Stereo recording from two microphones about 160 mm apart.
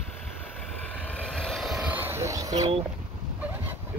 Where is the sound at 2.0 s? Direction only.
15° right (ahead or behind).